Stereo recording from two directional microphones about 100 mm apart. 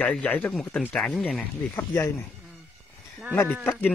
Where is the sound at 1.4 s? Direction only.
15° left (ahead or behind).